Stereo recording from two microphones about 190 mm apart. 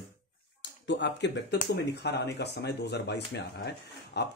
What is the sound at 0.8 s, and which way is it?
Speech, 65° left (ahead or behind).